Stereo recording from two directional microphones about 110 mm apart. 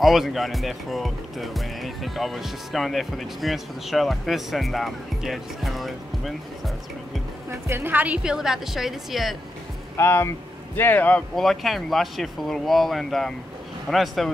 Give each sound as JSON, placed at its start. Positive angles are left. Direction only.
{"t": 0.0, "sound": "speech", "side_deg": 0}
{"t": 7.6, "sound": "a woman's voice", "side_deg": -20}
{"t": 9.9, "sound": "speech", "side_deg": 20}
{"t": 11.3, "sound": "speech", "side_deg": 0}